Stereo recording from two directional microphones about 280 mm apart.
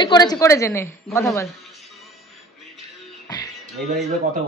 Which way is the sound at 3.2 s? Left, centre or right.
Centre.